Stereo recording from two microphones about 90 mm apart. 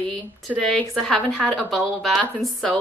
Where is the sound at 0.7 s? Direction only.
5° left (ahead or behind).